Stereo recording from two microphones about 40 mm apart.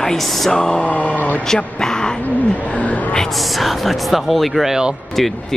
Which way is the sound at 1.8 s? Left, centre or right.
Centre.